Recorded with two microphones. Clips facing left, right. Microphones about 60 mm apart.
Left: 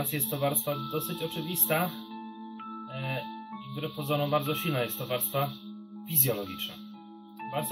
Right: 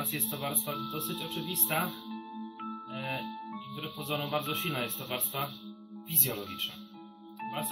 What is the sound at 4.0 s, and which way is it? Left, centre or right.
Speech, centre.